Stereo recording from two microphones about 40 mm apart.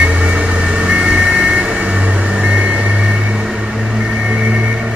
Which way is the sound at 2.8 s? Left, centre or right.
Centre.